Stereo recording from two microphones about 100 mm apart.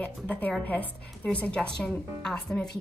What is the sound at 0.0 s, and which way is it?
A woman's voice, 15° left (ahead or behind).